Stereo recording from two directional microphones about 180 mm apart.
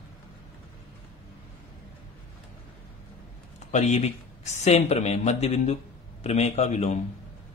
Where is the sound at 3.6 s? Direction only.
40° left (ahead or behind).